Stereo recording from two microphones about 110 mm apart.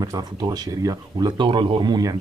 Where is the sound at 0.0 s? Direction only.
40° right (ahead or behind).